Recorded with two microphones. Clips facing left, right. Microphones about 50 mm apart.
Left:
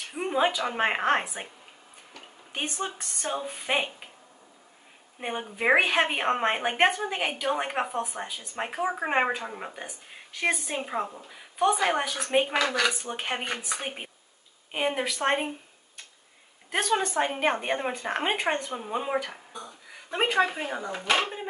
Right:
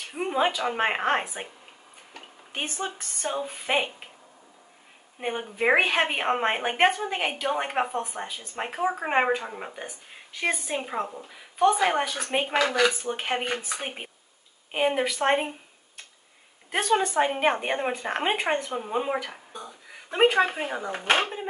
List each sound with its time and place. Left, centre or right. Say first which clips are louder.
0.0 s a woman's voice: even; centre
2.5 s speech: even; centre
5.2 s a woman's voice: right 2 dB; centre
16.7 s a woman's voice: right 3 dB; centre
20.9 s speech: right 2 dB; right